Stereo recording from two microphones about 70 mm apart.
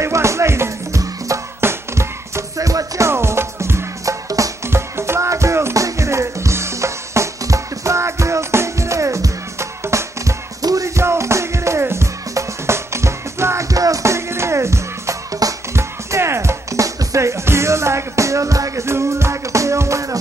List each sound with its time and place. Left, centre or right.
0.0 s music: right
3.1 s music: right
4.6 s music: right
10.6 s music: right
11.0 s music: right